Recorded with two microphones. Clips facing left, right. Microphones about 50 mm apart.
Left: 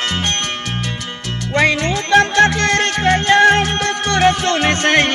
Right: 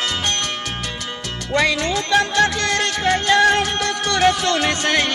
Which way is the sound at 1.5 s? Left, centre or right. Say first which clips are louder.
Left 3 dB; left.